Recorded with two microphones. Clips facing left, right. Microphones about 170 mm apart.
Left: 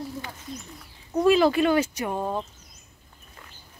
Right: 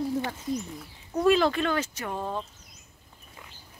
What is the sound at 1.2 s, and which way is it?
Speech, 5° left (ahead or behind).